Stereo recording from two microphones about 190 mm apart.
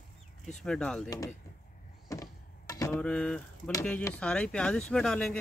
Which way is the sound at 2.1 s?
15° left (ahead or behind).